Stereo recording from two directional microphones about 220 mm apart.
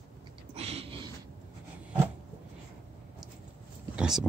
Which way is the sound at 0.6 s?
25° right (ahead or behind).